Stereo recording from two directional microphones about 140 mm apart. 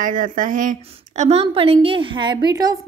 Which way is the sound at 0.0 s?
70° right (ahead or behind).